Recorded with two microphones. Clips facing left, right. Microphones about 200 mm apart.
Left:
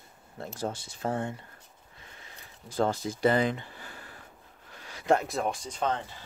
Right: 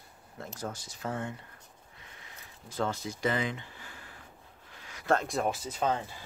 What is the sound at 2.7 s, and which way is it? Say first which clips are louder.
Speech: left 5 dB; 35° left (ahead or behind).